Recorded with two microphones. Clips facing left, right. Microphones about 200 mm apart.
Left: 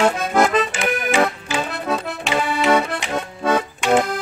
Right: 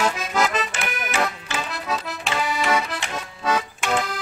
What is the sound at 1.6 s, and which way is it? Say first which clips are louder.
Accordion: left 4 dB; 55° left (ahead or behind).